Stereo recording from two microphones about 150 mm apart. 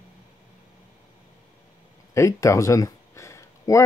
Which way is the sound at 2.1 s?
20° left (ahead or behind).